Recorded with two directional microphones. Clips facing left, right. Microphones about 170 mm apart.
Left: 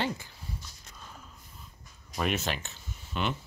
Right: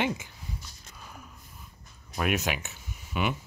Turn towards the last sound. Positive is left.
turn(degrees=-10)  # may be behind; listen again after turning